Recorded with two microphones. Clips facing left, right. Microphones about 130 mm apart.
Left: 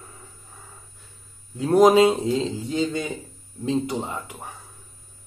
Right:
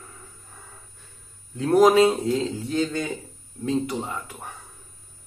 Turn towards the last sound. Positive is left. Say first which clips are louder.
# left 1 dB
turn(degrees=20)  # may be behind; listen again after turning